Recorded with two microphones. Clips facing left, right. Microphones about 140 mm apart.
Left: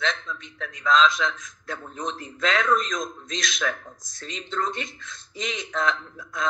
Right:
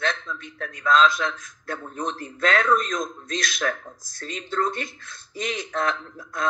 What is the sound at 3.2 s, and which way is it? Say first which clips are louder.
Speech: right 2 dB; 55° right (ahead or behind).